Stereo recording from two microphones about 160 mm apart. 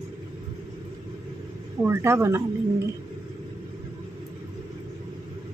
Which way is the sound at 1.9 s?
15° right (ahead or behind).